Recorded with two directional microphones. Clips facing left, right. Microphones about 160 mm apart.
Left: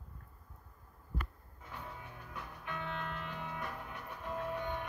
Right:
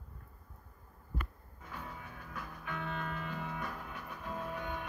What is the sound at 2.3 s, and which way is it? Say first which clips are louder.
Music: right 1 dB; 20° left (ahead or behind).